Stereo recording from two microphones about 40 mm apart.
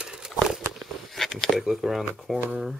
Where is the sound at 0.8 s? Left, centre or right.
Centre.